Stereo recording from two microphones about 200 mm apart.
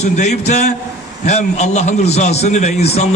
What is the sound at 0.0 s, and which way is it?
A man's voice, 35° left (ahead or behind).